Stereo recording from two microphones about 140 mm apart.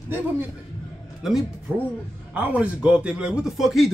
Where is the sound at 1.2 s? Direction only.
Centre (ahead or behind).